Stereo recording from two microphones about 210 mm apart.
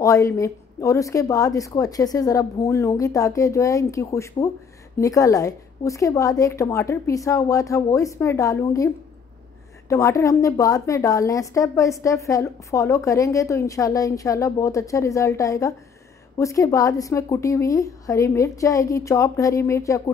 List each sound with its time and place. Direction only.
0.0 s a woman's voice: 15° left (ahead or behind)